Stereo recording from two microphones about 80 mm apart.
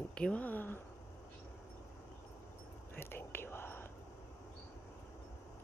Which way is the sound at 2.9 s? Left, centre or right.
Left.